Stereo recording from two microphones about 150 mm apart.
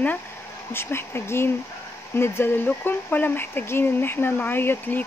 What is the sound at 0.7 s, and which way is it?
Speech, 15° left (ahead or behind).